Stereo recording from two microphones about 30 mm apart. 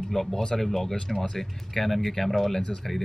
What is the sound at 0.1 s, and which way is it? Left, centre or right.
Speech, centre.